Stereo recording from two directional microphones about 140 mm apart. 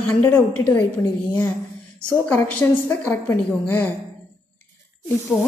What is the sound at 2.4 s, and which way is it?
A woman's voice, 10° left (ahead or behind).